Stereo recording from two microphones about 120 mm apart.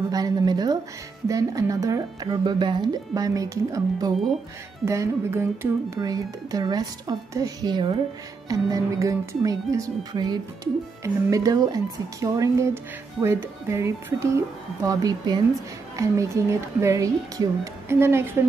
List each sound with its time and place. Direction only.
0.1 s a woman's voice: 35° right (ahead or behind)
8.5 s speech: 30° right (ahead or behind)